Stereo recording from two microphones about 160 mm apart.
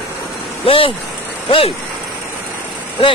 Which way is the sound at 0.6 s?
35° left (ahead or behind).